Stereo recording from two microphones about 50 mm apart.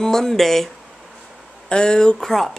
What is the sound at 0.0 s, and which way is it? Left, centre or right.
Speech, centre.